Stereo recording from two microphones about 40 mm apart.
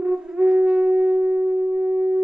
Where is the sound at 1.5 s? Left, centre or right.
Right.